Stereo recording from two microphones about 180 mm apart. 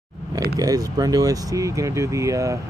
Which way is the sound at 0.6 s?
20° right (ahead or behind).